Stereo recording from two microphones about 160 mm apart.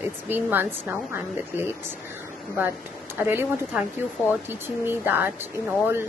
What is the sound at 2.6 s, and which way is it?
A woman's voice, 10° right (ahead or behind).